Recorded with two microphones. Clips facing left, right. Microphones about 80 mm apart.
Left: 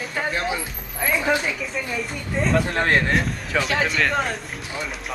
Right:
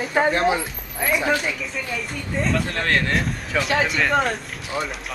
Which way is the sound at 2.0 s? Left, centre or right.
Centre.